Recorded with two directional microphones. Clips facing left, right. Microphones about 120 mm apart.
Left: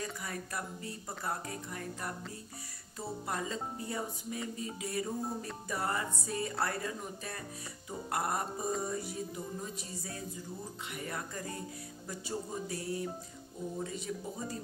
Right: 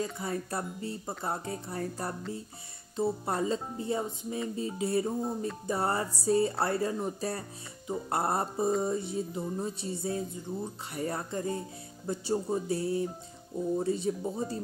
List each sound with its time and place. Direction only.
0.0 s speech: 25° right (ahead or behind)